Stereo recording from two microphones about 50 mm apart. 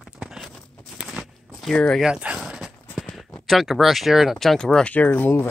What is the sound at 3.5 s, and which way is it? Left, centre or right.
Speech, centre.